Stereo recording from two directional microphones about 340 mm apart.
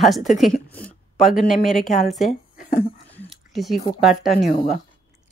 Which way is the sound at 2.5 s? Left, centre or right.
Left.